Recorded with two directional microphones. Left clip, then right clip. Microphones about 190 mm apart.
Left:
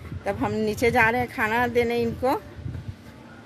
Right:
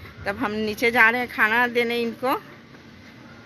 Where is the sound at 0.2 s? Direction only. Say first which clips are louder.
Even; 20° left (ahead or behind).